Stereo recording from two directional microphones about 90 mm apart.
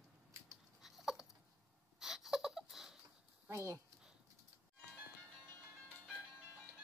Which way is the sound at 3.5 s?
30° right (ahead or behind).